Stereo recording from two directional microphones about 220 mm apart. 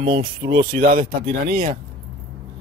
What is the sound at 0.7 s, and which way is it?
A man's voice, 40° right (ahead or behind).